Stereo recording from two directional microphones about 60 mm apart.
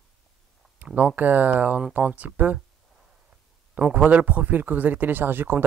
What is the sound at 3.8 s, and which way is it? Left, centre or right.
Speech, right.